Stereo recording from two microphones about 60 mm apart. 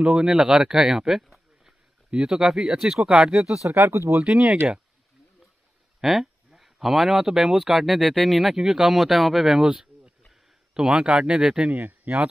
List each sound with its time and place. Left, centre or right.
0.0 s speech: centre
3.6 s speech: right
4.2 s speech: centre
5.9 s speech: centre
10.7 s speech: centre
11.7 s speech: right